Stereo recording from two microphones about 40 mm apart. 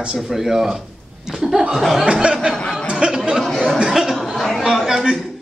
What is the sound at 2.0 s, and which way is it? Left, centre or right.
Speech, right.